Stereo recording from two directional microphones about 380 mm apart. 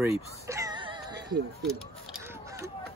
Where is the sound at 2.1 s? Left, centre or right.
Centre.